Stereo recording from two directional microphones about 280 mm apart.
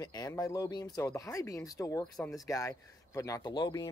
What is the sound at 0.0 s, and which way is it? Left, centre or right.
Speech, centre.